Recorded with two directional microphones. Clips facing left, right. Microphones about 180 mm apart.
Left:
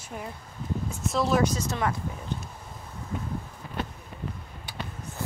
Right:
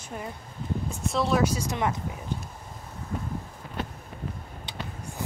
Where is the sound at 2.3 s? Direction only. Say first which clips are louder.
Right 1 dB; 10° right (ahead or behind).